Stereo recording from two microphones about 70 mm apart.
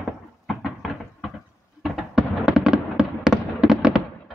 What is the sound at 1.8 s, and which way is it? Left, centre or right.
Fireworks, centre.